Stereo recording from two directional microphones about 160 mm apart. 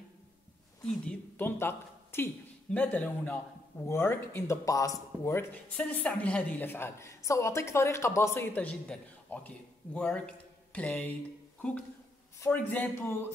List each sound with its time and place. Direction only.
1.0 s a man's voice: 15° left (ahead or behind)
12.4 s a man's voice: 10° left (ahead or behind)